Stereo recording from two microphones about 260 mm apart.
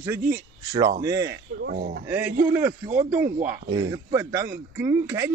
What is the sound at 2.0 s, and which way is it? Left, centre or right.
Speech, centre.